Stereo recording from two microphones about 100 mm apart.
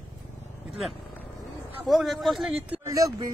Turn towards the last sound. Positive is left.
turn(degrees=-35)  # may be behind; listen again after turning